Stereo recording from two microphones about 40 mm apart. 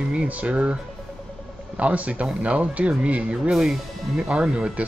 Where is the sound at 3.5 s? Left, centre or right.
Centre.